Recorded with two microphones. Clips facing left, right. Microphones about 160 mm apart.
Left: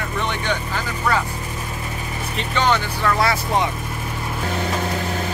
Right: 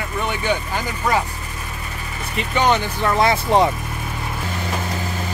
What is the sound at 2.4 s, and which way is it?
Speech, 15° right (ahead or behind).